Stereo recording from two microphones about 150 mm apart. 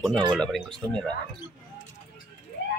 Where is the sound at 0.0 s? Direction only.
Centre (ahead or behind).